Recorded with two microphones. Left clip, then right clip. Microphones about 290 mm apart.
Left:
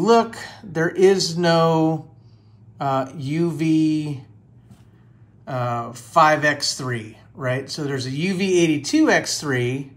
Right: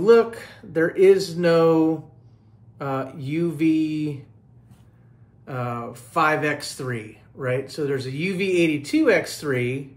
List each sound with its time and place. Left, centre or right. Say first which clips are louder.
0.0 s speech: right 1 dB; left
5.4 s speech: left 5 dB; centre